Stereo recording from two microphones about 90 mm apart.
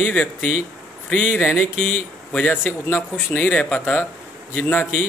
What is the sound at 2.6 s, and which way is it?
Speech, 20° left (ahead or behind).